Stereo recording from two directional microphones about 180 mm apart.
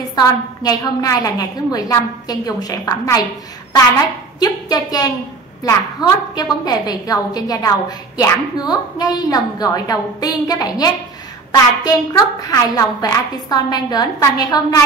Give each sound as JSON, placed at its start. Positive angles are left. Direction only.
{"t": 0.1, "sound": "a woman's voice", "side_deg": 20}
{"t": 4.4, "sound": "a woman's voice", "side_deg": 20}